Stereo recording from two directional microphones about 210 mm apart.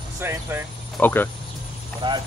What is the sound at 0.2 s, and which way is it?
Speech, 10° right (ahead or behind).